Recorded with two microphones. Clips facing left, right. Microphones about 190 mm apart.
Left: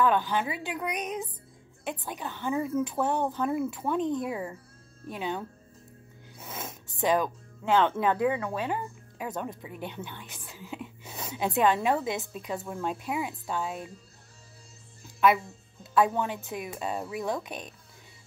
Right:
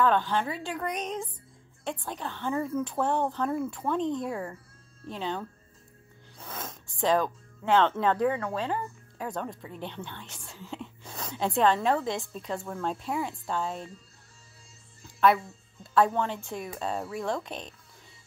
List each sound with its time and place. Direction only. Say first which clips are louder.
0.0 s speech: even; 10° left (ahead or behind)
3.0 s speech: right 2 dB; 20° left (ahead or behind)
3.3 s speech: left 1 dB; 5° left (ahead or behind)
6.3 s a sound: even; 10° left (ahead or behind)
7.6 s speech: right 1 dB; 10° left (ahead or behind)
15.1 s music: even; 10° left (ahead or behind)
15.9 s speech: right 1 dB; 15° left (ahead or behind)
17.2 s speech: left 1 dB; 15° left (ahead or behind)